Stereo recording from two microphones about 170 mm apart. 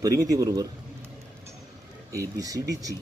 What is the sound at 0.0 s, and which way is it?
Speech, 20° right (ahead or behind).